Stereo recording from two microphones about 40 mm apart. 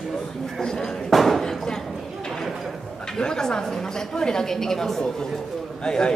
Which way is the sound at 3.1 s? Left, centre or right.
Centre.